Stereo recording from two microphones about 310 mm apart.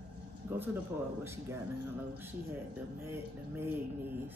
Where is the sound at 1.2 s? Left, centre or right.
Centre.